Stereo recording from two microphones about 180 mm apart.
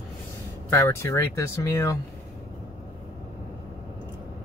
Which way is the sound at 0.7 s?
15° left (ahead or behind).